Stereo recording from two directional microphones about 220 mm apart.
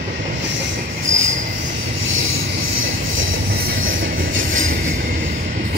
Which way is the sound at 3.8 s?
60° right (ahead or behind).